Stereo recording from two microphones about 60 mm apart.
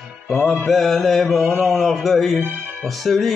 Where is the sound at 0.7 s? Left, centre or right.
Centre.